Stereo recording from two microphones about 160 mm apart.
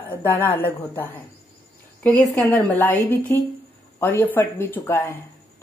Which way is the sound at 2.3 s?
15° left (ahead or behind).